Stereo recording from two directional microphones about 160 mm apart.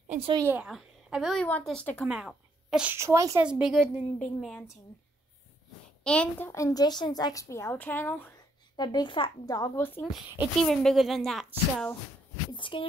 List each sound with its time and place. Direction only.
0.1 s a woman's voice: 35° right (ahead or behind)
0.5 s speech: 5° right (ahead or behind)
2.0 s speech: 5° right (ahead or behind)
3.0 s a woman's voice: 20° right (ahead or behind)
3.4 s speech: 5° right (ahead or behind)
6.0 s a child's voice: 5° left (ahead or behind)
6.5 s a woman's voice: 20° left (ahead or behind)
8.7 s a woman's voice: 25° left (ahead or behind)
10.6 s speech: 5° left (ahead or behind)
12.5 s speech: 30° left (ahead or behind)